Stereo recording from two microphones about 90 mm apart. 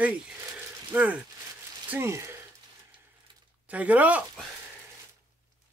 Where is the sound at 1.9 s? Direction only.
30° right (ahead or behind).